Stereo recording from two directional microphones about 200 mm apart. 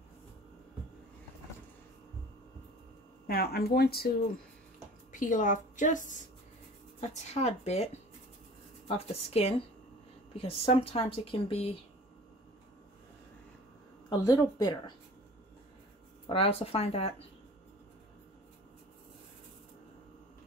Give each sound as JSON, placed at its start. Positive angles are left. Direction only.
{"t": 3.3, "sound": "speech", "side_deg": 50}
{"t": 5.1, "sound": "a woman's voice", "side_deg": 40}
{"t": 14.0, "sound": "speech", "side_deg": 20}
{"t": 16.3, "sound": "speech", "side_deg": 30}